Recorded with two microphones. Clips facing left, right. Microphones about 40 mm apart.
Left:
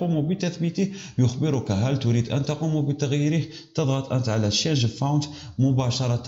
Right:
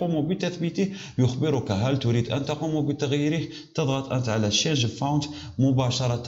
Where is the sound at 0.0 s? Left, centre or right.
Centre.